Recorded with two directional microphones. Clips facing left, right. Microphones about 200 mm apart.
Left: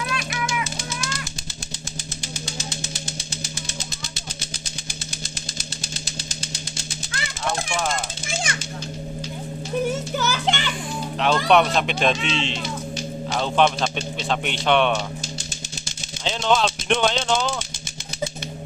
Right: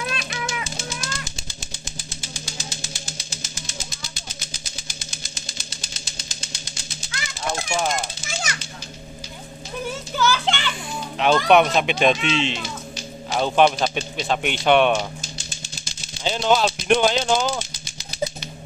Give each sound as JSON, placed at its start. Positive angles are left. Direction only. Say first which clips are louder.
{"t": 0.0, "sound": "music", "louder": "left 1 dB", "side_deg": -25}
{"t": 10.1, "sound": "children playing", "louder": "right 1 dB", "side_deg": 20}
{"t": 11.1, "sound": "speech", "louder": "right 2 dB", "side_deg": -5}
{"t": 16.3, "sound": "speech", "louder": "right 2 dB", "side_deg": -5}